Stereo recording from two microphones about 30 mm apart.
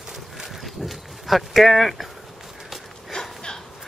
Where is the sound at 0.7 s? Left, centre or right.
Centre.